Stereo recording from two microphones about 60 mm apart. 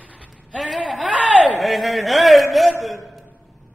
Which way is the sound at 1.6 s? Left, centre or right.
Centre.